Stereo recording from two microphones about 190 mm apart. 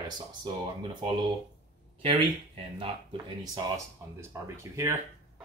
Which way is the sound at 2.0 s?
30° right (ahead or behind).